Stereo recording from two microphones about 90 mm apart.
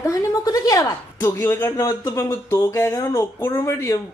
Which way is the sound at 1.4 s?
25° left (ahead or behind).